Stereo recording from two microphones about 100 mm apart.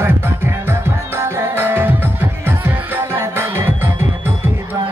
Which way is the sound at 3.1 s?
25° right (ahead or behind).